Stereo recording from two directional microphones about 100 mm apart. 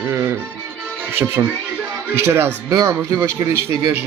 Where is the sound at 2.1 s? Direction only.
25° right (ahead or behind).